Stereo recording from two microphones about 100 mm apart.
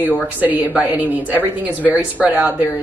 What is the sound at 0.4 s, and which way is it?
Speech, 15° right (ahead or behind).